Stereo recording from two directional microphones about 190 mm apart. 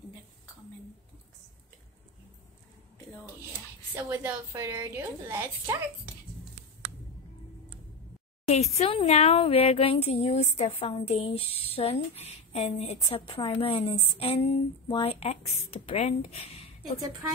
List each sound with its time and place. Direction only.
3.9 s a woman's voice: 10° right (ahead or behind)
8.7 s a woman's voice: 30° left (ahead or behind)